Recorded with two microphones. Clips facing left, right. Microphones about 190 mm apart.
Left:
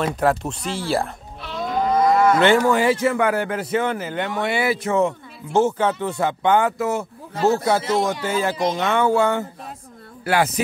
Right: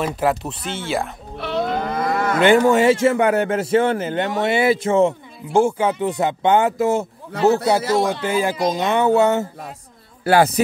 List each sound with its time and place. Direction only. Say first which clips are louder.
0.0 s speech: even; 5° right (ahead or behind)
1.4 s livestock: right 2 dB; 65° right (ahead or behind)
2.4 s a man's voice: right 3 dB; 20° right (ahead or behind)
5.5 s a man's voice: right 2 dB; 10° right (ahead or behind)
10.2 s speech: right 5 dB; 35° right (ahead or behind)